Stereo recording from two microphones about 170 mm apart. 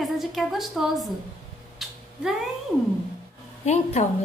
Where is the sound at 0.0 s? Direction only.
Centre (ahead or behind).